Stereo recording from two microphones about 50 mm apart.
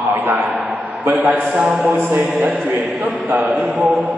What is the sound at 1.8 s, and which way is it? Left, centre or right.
Speech, right.